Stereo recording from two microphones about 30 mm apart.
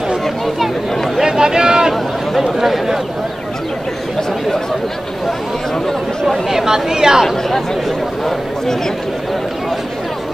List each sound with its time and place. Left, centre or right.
1.2 s a sound: right
1.9 s speech: centre
6.5 s speech: centre
7.2 s speech: centre